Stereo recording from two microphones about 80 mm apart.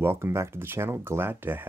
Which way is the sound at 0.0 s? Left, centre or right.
Right.